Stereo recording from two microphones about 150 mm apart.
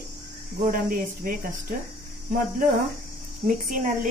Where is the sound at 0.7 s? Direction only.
65° right (ahead or behind).